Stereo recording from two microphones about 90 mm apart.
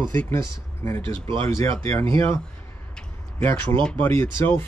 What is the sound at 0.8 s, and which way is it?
Speech, 30° left (ahead or behind).